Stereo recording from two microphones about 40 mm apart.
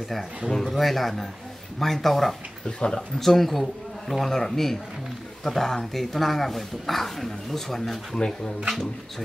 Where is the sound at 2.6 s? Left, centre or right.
Left.